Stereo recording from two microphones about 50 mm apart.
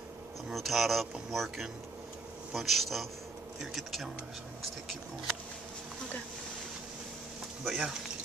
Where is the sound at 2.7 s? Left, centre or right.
Centre.